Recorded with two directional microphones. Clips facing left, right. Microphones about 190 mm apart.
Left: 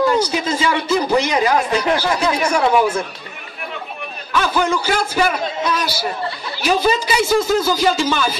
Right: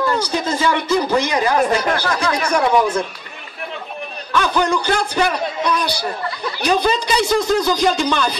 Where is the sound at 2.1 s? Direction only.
25° left (ahead or behind).